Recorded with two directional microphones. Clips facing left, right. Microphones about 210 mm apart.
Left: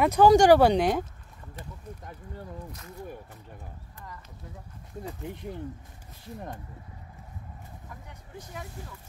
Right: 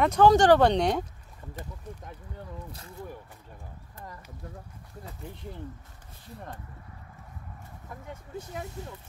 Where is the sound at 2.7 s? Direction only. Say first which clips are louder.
Left 1 dB; 30° right (ahead or behind).